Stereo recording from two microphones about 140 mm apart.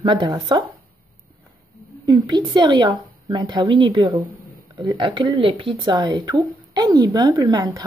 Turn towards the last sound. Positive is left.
turn(degrees=-30)  # may be behind; listen again after turning